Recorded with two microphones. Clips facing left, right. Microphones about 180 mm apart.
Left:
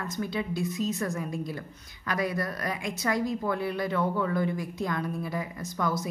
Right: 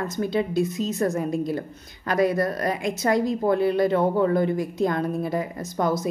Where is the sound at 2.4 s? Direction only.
35° right (ahead or behind).